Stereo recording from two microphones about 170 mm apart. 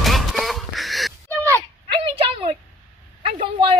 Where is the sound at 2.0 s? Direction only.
30° right (ahead or behind).